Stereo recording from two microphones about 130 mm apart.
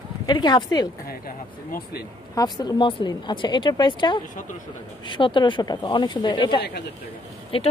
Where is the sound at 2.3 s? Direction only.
30° left (ahead or behind); by 7.7 s 45° left (ahead or behind).